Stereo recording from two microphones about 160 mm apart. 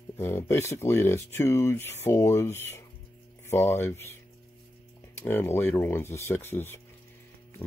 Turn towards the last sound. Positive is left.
turn(degrees=15)  # may be behind; listen again after turning